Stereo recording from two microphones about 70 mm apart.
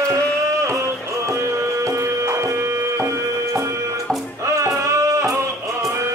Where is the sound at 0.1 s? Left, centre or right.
Right.